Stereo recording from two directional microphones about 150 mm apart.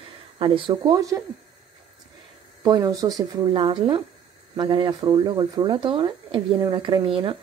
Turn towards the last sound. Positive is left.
turn(degrees=-35)  # may be behind; listen again after turning